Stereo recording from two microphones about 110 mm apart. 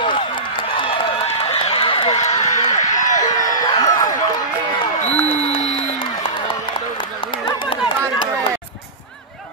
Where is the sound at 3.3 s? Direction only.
35° left (ahead or behind).